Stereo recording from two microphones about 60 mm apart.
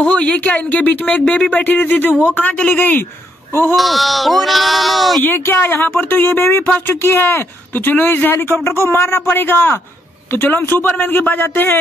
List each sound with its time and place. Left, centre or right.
0.0 s speech: left
3.7 s speech: centre
5.4 s speech: left